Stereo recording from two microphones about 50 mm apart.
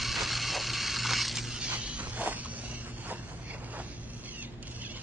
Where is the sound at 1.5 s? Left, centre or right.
Right.